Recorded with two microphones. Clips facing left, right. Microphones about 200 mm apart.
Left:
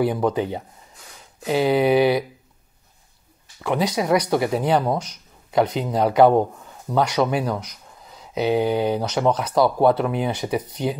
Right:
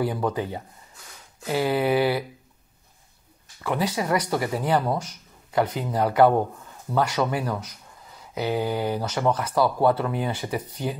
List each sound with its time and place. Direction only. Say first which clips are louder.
0.0 s speech: left 5 dB; 15° left (ahead or behind)
3.6 s speech: left 4 dB; 15° left (ahead or behind)